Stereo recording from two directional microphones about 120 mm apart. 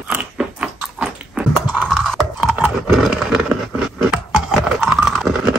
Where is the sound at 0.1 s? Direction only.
10° right (ahead or behind).